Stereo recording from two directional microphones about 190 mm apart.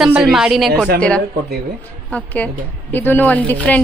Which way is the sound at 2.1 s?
10° left (ahead or behind).